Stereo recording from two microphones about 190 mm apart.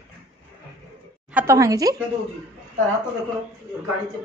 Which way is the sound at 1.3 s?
10° right (ahead or behind).